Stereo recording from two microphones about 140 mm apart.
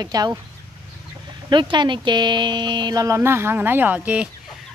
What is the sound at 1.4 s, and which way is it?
Speech, 35° right (ahead or behind).